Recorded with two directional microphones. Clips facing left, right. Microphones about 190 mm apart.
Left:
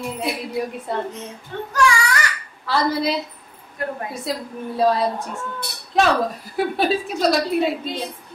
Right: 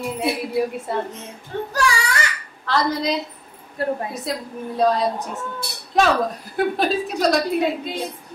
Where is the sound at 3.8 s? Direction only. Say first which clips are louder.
Right 4 dB; 30° right (ahead or behind).